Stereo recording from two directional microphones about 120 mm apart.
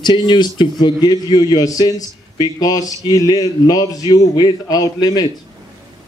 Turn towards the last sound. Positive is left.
turn(degrees=35)  # may be behind; listen again after turning